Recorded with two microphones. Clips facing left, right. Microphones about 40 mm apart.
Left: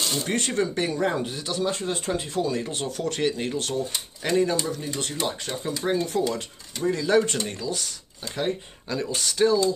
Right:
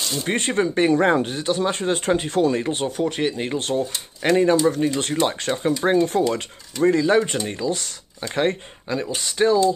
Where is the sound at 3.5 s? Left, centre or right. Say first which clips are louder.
Right 4 dB; right.